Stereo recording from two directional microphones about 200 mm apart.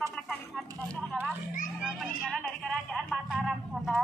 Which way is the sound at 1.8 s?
5° right (ahead or behind).